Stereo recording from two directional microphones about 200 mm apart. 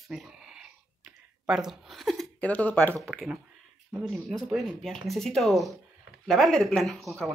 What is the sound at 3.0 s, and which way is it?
Speech, centre (ahead or behind).